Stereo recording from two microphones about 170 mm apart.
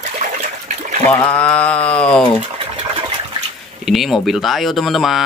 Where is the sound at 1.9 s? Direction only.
5° left (ahead or behind).